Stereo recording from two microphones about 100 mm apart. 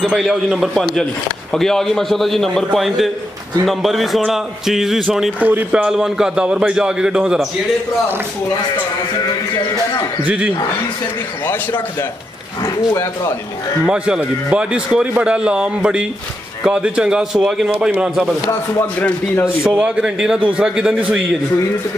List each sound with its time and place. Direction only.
0.0 s a man's voice: centre (ahead or behind)
5.4 s speech: 15° right (ahead or behind)
10.2 s speech: 15° right (ahead or behind)
12.6 s speech: 30° left (ahead or behind)
13.8 s speech: 10° right (ahead or behind)
18.5 s speech: 20° left (ahead or behind)
19.7 s speech: 10° right (ahead or behind)